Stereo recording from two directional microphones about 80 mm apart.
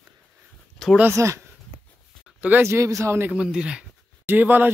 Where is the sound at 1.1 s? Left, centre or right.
Right.